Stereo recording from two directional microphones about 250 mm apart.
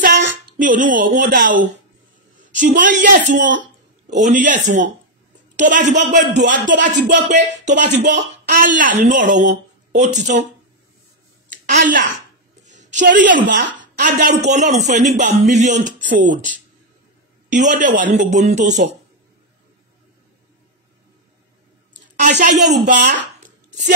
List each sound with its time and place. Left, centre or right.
0.0 s a sound: right
2.4 s speech: right
5.6 s speech: right
6.7 s speech: right
7.2 s speech: right
11.6 s a woman's voice: right
22.2 s speech: right
22.7 s speech: right